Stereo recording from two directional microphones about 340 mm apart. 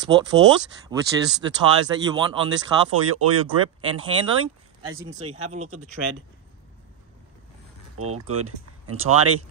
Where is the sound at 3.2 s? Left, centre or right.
Right.